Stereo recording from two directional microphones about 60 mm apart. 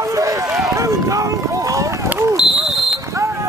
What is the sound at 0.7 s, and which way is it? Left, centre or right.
Run, right.